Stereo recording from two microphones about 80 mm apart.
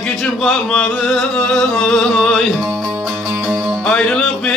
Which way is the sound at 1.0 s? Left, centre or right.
Centre.